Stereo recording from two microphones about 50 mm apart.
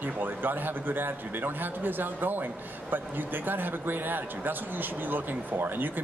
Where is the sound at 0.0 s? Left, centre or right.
Right.